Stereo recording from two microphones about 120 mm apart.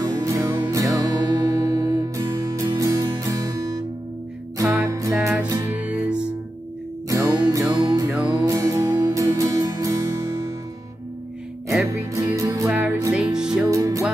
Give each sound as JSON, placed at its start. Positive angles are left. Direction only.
{"t": 0.0, "sound": "music", "side_deg": -30}
{"t": 4.9, "sound": "music", "side_deg": -25}
{"t": 7.1, "sound": "music", "side_deg": -25}
{"t": 11.9, "sound": "music", "side_deg": -25}
{"t": 12.7, "sound": "music", "side_deg": -15}
{"t": 13.7, "sound": "music", "side_deg": -25}